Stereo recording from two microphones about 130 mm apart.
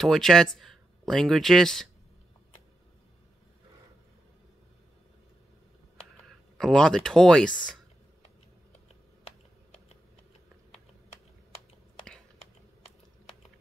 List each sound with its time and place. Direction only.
0.0 s speech: 5° left (ahead or behind)
6.6 s speech: 5° left (ahead or behind)